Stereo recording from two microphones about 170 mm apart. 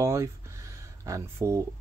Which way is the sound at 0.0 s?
15° right (ahead or behind).